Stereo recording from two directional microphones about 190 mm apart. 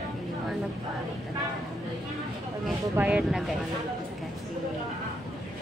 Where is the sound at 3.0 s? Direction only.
5° right (ahead or behind).